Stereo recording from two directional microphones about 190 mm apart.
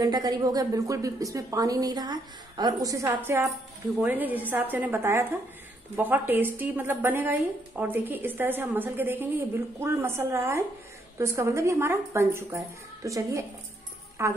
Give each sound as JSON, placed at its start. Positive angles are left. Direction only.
{"t": 0.0, "sound": "a woman's voice", "side_deg": -20}